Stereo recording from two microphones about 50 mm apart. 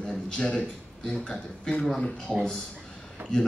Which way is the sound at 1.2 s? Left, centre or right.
Centre.